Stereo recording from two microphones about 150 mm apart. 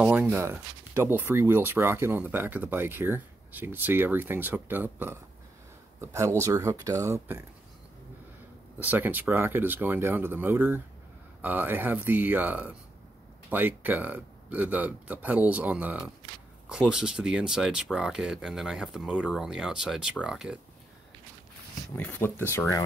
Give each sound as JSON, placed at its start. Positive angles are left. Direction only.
{"t": 0.0, "sound": "speech", "side_deg": -10}
{"t": 8.7, "sound": "speech", "side_deg": -10}
{"t": 21.9, "sound": "speech", "side_deg": 10}